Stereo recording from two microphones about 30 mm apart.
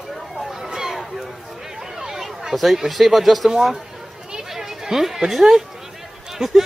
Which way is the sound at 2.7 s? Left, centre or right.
Centre.